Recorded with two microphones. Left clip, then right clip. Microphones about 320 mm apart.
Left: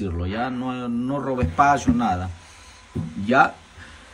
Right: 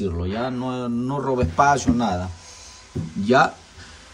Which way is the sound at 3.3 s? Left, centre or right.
Centre.